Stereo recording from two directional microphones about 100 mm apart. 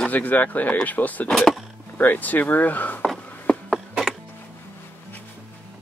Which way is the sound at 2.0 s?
15° left (ahead or behind).